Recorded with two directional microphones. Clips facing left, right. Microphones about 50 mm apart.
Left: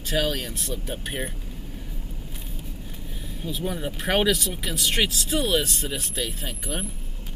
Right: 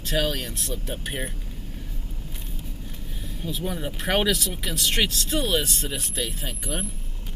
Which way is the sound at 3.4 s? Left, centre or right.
Centre.